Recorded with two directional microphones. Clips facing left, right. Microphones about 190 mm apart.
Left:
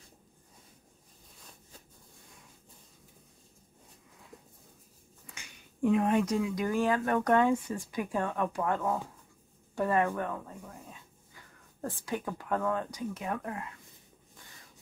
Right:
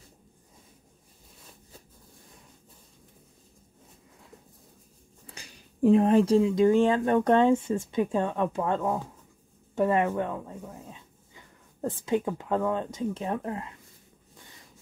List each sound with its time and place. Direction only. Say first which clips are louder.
5.2 s speech: right 4 dB; 35° right (ahead or behind)